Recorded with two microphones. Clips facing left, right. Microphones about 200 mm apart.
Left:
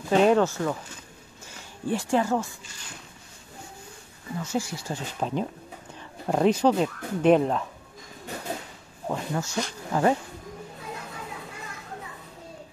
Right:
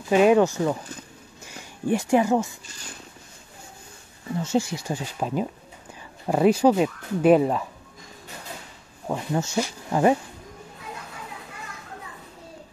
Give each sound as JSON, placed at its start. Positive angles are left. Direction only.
{"t": 0.1, "sound": "speech", "side_deg": -10}
{"t": 4.4, "sound": "speech", "side_deg": -25}
{"t": 4.8, "sound": "speech", "side_deg": -5}
{"t": 9.1, "sound": "speech", "side_deg": -15}